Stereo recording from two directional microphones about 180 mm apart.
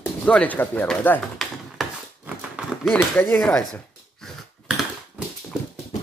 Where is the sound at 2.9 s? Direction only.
10° left (ahead or behind).